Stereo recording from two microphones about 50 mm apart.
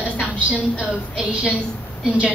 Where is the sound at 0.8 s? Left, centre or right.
Centre.